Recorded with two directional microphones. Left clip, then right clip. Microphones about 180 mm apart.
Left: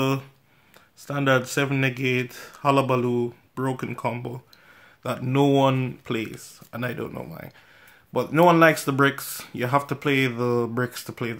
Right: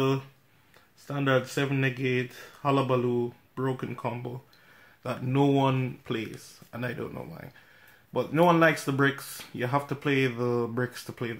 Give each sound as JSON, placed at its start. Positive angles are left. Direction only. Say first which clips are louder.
{"t": 1.0, "sound": "speech", "louder": "left 5 dB", "side_deg": 35}